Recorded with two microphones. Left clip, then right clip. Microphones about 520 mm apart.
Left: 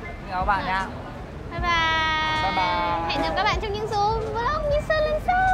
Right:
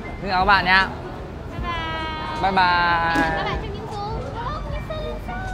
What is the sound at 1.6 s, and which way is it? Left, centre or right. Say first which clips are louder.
Music: left 6 dB; left.